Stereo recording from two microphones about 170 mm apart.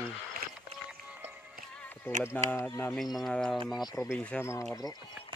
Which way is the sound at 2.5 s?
15° left (ahead or behind).